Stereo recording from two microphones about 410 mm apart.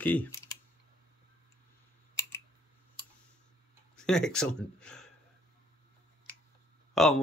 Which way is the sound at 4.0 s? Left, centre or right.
Centre.